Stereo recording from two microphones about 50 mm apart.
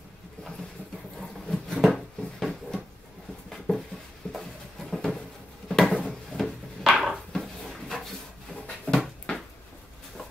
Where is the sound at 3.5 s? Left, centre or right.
Centre.